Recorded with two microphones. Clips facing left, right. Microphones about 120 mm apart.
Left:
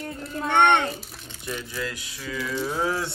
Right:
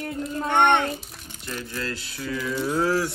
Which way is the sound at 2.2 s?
5° right (ahead or behind).